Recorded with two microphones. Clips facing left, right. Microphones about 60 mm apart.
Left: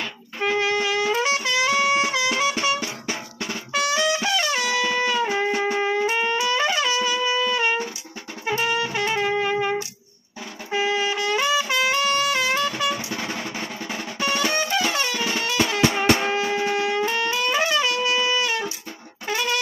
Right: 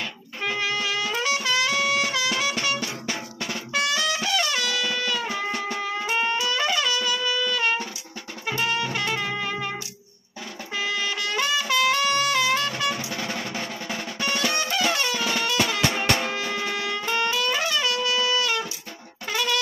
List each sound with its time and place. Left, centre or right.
0.4 s trumpet: left
4.5 s music: centre
5.9 s wind instrument: centre
8.5 s music: centre
12.1 s drum: centre
16.2 s music: centre
17.3 s wind instrument: left
19.2 s music: centre